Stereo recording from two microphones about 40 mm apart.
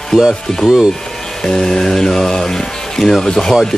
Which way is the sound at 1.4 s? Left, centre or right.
Centre.